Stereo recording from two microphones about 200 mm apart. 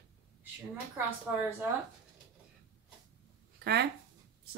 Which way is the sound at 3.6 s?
55° right (ahead or behind).